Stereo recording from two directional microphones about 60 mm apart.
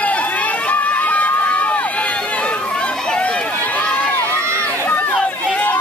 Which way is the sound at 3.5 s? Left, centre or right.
Left.